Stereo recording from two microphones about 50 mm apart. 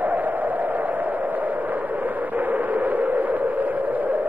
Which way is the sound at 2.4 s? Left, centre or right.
Right.